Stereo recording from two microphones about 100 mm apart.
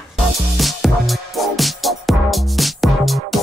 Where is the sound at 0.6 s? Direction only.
Centre (ahead or behind).